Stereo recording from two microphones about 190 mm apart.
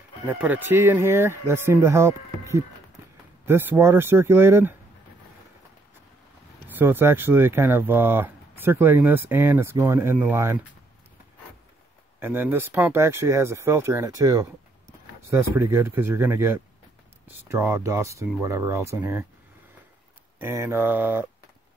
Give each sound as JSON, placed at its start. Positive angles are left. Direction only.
{"t": 0.3, "sound": "speech", "side_deg": -10}
{"t": 6.7, "sound": "speech", "side_deg": -10}
{"t": 12.2, "sound": "speech", "side_deg": -10}
{"t": 20.3, "sound": "speech", "side_deg": -10}